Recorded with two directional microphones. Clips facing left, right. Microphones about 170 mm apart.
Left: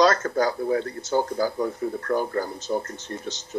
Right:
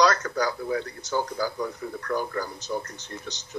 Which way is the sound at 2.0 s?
45° left (ahead or behind).